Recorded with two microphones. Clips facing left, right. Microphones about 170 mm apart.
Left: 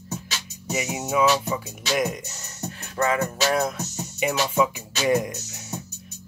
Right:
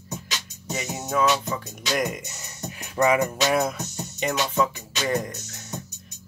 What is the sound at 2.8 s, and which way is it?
Music, 15° right (ahead or behind).